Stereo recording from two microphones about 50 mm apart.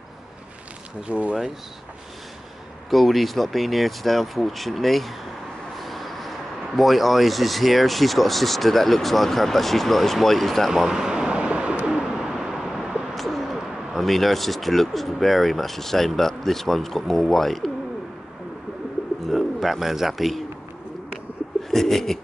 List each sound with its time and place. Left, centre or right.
1.0 s speech: right
2.9 s speech: centre
10.7 s bird: centre
11.9 s bird: centre
19.3 s speech: centre
21.6 s bird: centre